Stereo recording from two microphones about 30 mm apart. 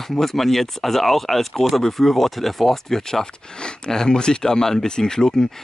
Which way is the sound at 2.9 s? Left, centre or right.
Centre.